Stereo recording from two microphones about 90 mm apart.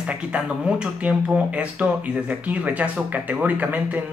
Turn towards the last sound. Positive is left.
turn(degrees=-20)  # may be behind; listen again after turning